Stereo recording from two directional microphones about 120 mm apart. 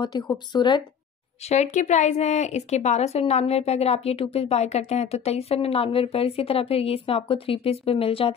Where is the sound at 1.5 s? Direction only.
80° left.